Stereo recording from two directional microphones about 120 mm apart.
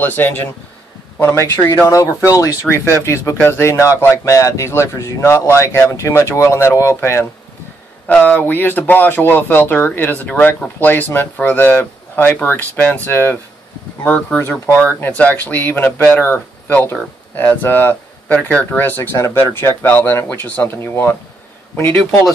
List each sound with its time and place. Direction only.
0.0 s speech: 15° left (ahead or behind)